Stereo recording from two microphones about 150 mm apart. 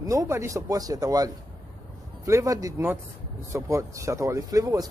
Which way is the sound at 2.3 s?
20° right (ahead or behind).